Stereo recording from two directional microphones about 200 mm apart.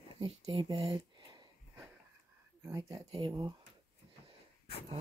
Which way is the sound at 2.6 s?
15° right (ahead or behind).